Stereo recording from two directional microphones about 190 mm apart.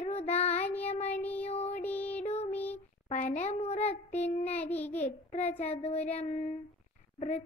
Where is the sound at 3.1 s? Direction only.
40° left (ahead or behind).